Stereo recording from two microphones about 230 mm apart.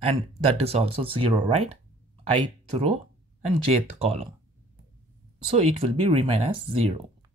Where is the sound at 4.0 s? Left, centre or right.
Right.